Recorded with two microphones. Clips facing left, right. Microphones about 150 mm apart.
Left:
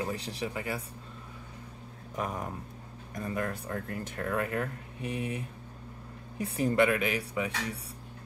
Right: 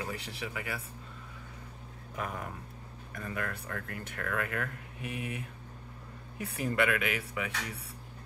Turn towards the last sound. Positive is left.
turn(degrees=35)  # may be behind; listen again after turning